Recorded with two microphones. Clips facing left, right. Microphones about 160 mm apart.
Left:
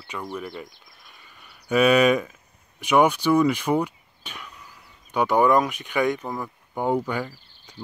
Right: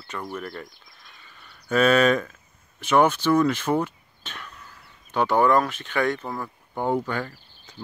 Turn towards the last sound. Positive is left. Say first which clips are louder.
# left 1 dB
turn(degrees=10)  # may be behind; listen again after turning